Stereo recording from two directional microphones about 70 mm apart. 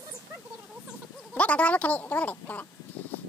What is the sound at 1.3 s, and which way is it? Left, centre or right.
Speech, centre.